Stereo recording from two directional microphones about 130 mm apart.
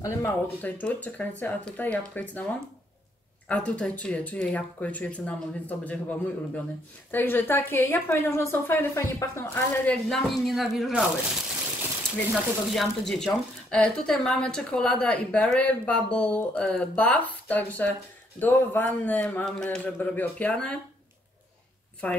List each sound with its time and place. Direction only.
0.0 s speech: 20° left (ahead or behind)
10.0 s speech: centre (ahead or behind)
12.7 s speech: 5° left (ahead or behind)
22.0 s speech: 10° left (ahead or behind)